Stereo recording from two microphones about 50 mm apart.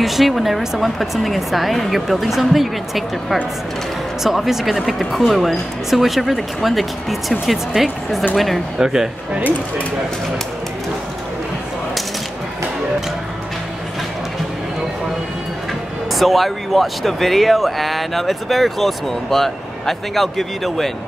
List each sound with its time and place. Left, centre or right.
0.0 s speech: centre
8.7 s speech: centre
16.1 s speech: centre